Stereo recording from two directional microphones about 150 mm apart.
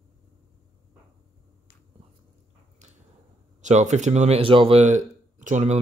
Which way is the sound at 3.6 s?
50° right (ahead or behind).